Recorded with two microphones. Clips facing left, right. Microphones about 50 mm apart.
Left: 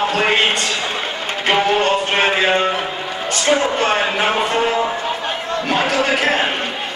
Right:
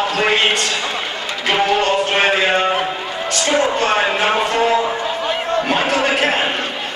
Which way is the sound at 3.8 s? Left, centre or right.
Centre.